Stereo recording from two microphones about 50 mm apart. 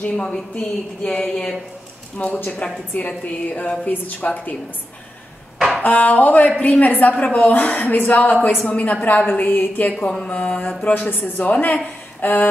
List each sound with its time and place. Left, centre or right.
0.0 s a woman's voice: left
5.8 s a woman's voice: left
9.9 s a woman's voice: centre
12.2 s a sound: left